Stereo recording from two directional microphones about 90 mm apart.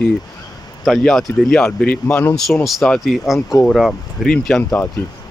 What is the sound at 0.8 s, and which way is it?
Speech, centre (ahead or behind).